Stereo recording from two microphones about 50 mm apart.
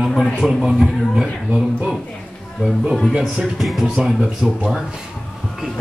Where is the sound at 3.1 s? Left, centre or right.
Centre.